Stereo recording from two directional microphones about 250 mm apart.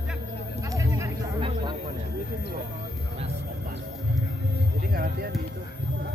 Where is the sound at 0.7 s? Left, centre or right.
Centre.